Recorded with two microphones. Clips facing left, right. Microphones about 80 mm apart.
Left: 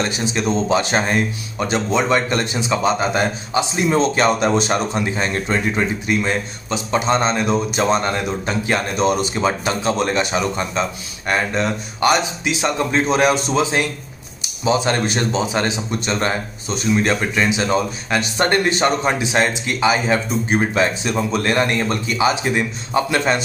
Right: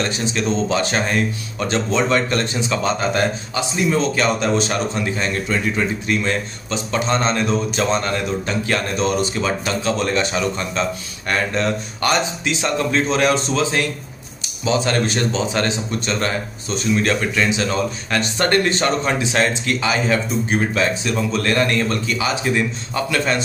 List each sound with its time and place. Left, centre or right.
0.0 s a man's voice: centre
3.7 s speech: left
6.0 s a man's voice: centre